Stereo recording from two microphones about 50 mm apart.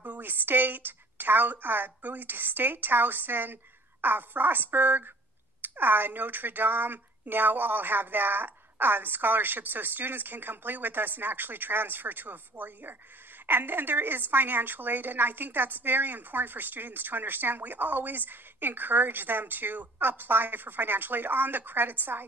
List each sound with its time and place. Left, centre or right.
0.0 s a woman's voice: right